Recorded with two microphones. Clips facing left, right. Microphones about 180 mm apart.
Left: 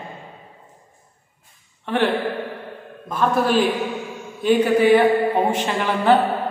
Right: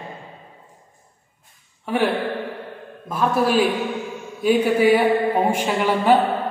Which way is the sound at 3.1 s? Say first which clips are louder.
Even; 5° right (ahead or behind).